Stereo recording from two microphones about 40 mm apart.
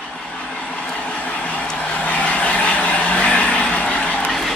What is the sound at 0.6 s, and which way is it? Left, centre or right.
Vehicle, left.